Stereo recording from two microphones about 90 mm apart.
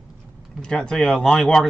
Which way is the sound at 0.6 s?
5° left (ahead or behind).